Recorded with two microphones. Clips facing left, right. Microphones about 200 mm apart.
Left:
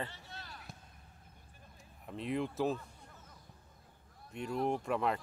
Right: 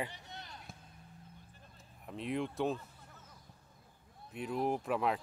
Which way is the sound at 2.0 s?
Centre (ahead or behind).